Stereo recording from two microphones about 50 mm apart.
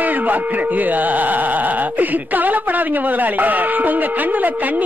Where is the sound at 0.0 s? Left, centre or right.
Right.